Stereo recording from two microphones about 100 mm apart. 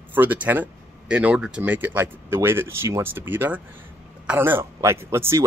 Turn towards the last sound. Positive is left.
turn(degrees=-25)  # may be behind; listen again after turning